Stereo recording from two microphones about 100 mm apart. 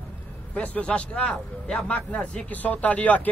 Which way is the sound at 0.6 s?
10° left (ahead or behind).